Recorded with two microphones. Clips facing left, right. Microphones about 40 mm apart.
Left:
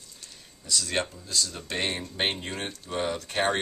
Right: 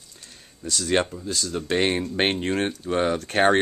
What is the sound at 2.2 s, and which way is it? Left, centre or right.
Speech, right.